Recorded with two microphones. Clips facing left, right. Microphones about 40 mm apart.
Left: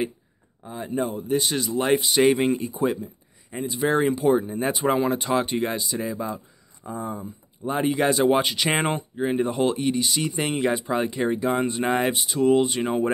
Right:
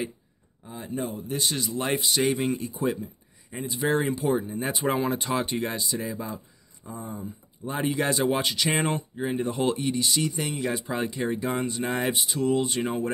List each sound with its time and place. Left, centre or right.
0.7 s speech: centre
2.1 s speech: left
2.6 s speech: centre
6.8 s speech: left
7.7 s speech: centre
9.5 s speech: centre
10.3 s speech: left
10.7 s speech: centre
11.6 s speech: left
11.9 s speech: centre